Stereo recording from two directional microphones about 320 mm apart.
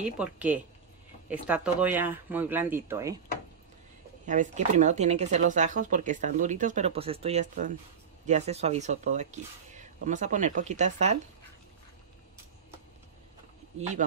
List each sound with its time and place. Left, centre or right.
0.0 s speech: centre
4.3 s speech: right